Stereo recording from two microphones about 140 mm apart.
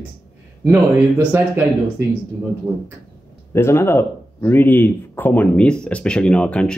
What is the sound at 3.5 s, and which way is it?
Speech, 20° left (ahead or behind).